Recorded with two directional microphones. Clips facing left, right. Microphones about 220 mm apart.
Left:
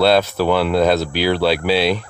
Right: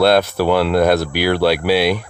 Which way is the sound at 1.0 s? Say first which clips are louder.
Right 1 dB; 15° right (ahead or behind).